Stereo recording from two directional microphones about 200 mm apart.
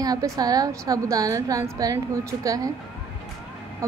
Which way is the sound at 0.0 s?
20° right (ahead or behind).